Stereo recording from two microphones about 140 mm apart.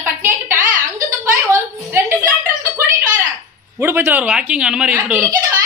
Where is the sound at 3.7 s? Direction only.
15° right (ahead or behind).